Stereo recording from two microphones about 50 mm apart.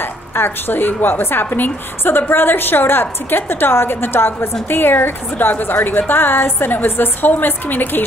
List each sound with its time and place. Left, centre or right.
0.0 s a woman's voice: left